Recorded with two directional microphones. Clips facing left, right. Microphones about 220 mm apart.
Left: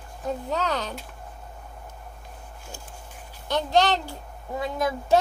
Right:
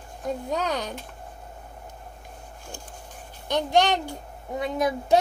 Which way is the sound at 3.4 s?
15° right (ahead or behind).